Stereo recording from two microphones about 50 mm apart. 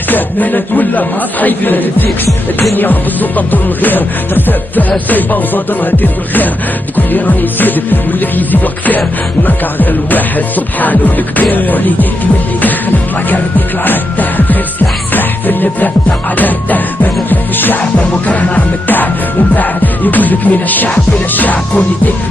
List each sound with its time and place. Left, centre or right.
0.1 s music: left
13.3 s music: left